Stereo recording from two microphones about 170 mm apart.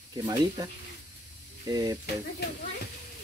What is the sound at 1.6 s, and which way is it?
Speech, 20° right (ahead or behind).